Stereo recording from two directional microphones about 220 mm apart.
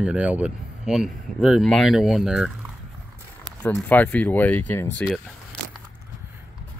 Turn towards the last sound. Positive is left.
turn(degrees=10)  # may be behind; listen again after turning